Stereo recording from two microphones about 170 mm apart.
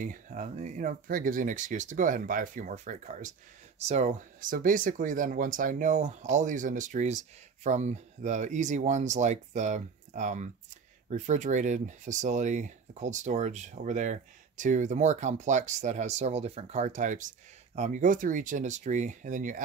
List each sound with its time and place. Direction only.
0.0 s speech: 50° right (ahead or behind)